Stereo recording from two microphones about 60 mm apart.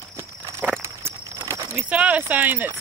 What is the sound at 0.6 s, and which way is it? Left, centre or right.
Clip-clop, right.